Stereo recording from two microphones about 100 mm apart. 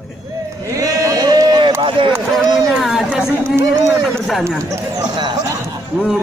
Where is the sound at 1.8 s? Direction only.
55° right (ahead or behind).